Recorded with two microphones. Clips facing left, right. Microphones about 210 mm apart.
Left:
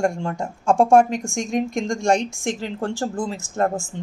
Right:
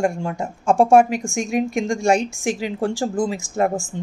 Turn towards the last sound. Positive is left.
turn(degrees=-10)  # may be behind; listen again after turning